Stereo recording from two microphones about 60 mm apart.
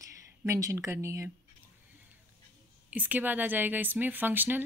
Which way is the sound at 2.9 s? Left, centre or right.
Right.